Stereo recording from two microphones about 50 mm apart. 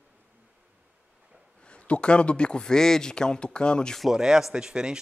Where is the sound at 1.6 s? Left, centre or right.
Left.